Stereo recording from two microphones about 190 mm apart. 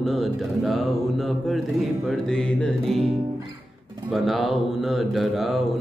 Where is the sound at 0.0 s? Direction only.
Centre (ahead or behind).